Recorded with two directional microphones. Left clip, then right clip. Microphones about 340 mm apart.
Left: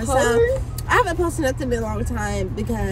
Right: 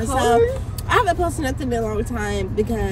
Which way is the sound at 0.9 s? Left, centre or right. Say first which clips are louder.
Right 1 dB; centre.